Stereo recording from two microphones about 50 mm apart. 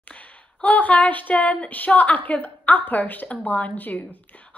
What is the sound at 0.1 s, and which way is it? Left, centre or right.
A woman's voice, left.